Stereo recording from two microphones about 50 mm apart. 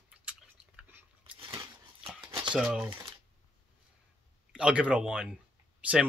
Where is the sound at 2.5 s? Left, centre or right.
Centre.